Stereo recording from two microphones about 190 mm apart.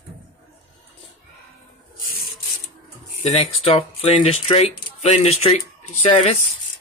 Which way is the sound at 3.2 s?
35° left (ahead or behind).